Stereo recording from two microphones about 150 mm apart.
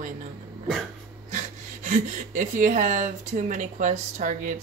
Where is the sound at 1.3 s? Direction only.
55° right (ahead or behind).